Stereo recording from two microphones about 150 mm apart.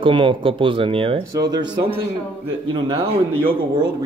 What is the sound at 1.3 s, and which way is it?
Speech, 25° right (ahead or behind).